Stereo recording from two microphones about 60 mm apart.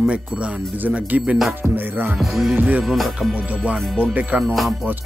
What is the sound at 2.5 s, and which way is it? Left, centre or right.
Speech, right.